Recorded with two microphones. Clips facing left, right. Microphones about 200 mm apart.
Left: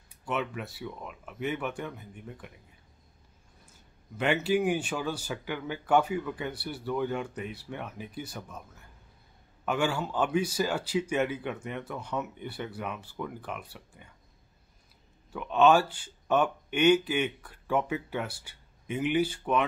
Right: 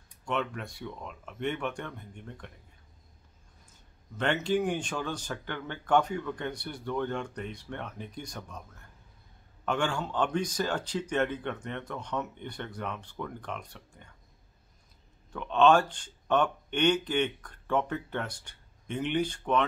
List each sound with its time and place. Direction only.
0.1 s speech: 5° left (ahead or behind)
4.2 s speech: 10° left (ahead or behind)
15.3 s speech: 5° left (ahead or behind)